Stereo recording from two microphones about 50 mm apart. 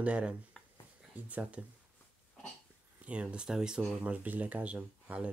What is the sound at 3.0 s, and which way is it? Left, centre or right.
Speech, right.